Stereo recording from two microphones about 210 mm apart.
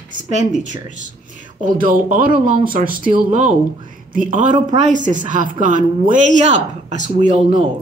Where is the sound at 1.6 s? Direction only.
40° right (ahead or behind).